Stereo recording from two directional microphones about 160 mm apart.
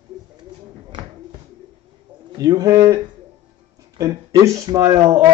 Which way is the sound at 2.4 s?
25° right (ahead or behind).